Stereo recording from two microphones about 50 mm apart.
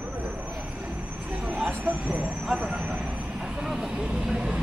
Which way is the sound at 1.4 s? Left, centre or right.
Right.